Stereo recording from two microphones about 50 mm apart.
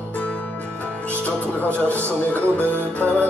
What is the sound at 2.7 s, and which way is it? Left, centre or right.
Music, left.